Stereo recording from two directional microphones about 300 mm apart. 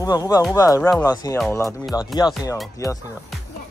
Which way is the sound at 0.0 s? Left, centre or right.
Centre.